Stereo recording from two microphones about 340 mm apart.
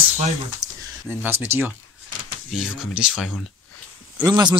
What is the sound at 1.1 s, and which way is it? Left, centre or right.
Speech, centre.